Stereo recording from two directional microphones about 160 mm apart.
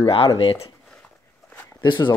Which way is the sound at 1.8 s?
30° left (ahead or behind).